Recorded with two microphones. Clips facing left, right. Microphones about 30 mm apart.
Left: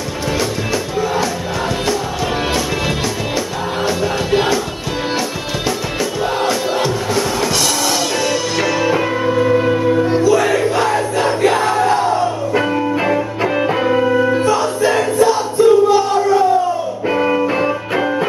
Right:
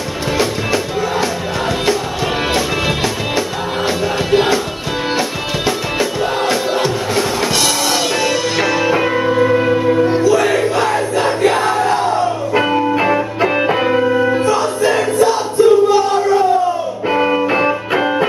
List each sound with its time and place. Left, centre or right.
3.8 s music: centre
5.9 s music: centre
14.4 s crowd: centre
17.1 s music: centre